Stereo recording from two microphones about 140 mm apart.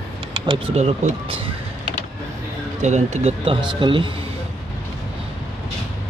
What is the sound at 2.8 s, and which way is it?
Speech, 55° right (ahead or behind).